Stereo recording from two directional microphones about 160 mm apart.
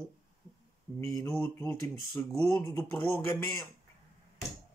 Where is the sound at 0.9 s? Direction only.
20° left (ahead or behind).